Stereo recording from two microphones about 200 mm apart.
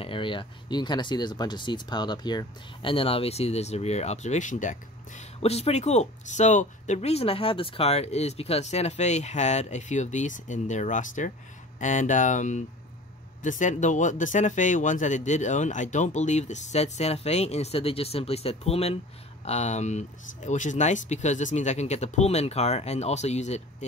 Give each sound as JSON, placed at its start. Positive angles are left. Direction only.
{"t": 0.0, "sound": "speech", "side_deg": 25}